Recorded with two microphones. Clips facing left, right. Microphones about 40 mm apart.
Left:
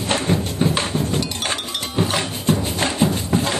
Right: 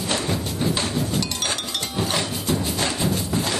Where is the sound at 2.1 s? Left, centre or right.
Left.